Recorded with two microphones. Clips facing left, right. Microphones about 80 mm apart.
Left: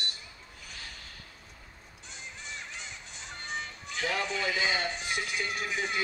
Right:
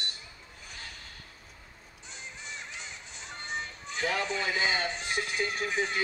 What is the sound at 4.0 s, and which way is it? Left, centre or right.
A man's voice, right.